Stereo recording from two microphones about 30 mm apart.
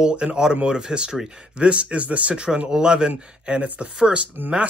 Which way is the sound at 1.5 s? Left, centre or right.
Right.